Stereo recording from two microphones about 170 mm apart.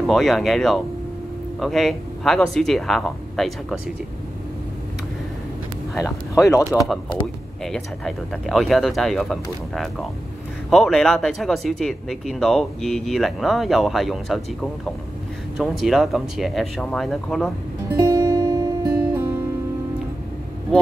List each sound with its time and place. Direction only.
0.0 s speech: centre (ahead or behind)
5.9 s speech: 20° left (ahead or behind)
7.6 s speech: 5° left (ahead or behind)
17.9 s music: 25° right (ahead or behind)